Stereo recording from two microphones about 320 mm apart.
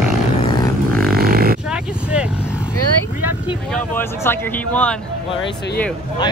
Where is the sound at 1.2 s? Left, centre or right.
Right.